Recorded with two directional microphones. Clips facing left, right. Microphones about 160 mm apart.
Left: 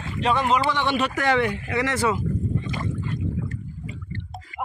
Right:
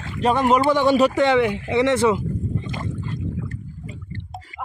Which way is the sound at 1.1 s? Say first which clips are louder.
Right 5 dB; 20° right (ahead or behind).